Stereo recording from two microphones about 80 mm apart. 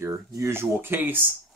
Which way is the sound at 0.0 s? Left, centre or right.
Right.